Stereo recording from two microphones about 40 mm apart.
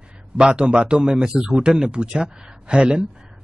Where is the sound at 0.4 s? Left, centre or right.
Right.